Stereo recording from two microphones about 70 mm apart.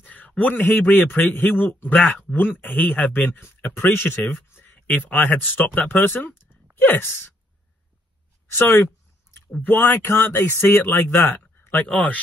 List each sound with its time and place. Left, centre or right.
0.0 s a sound: left
0.4 s speech: left
8.5 s speech: left